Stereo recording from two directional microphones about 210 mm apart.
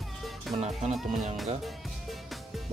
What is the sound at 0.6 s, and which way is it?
Speech, 30° right (ahead or behind).